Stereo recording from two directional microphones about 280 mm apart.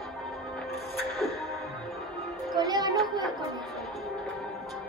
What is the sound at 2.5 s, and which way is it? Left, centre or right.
Music, centre.